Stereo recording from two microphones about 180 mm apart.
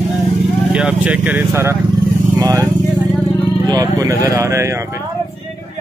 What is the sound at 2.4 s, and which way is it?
Vehicle, 20° right (ahead or behind).